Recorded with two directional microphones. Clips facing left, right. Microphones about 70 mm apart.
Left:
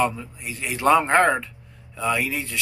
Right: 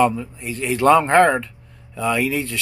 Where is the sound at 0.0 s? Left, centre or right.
Centre.